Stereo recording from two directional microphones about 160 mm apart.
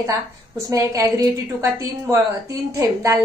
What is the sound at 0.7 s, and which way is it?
Speech, 20° right (ahead or behind).